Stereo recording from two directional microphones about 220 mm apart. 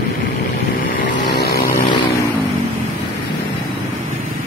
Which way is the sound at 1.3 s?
45° left (ahead or behind).